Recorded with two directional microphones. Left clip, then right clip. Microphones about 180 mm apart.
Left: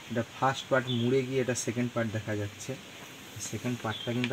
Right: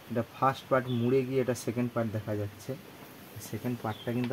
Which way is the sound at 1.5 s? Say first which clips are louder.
Even; 10° right (ahead or behind).